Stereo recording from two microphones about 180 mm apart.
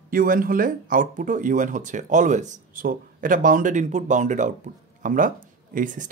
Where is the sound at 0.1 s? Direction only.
50° right (ahead or behind).